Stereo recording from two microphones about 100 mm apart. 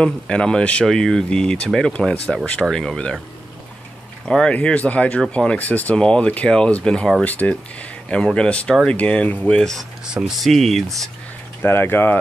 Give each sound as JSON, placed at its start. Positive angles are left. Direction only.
{"t": 0.0, "sound": "speech", "side_deg": 10}
{"t": 4.3, "sound": "speech", "side_deg": 10}
{"t": 11.6, "sound": "speech", "side_deg": 25}